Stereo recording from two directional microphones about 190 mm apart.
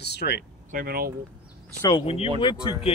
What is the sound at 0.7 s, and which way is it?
Speech, 50° right (ahead or behind).